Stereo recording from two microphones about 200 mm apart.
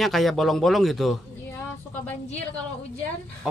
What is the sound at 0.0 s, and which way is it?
Speech, centre (ahead or behind).